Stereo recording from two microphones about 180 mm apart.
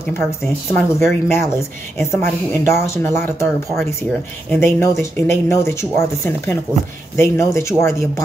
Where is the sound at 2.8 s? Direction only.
15° left (ahead or behind).